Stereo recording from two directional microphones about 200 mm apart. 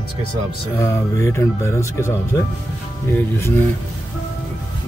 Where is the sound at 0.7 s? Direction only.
15° left (ahead or behind).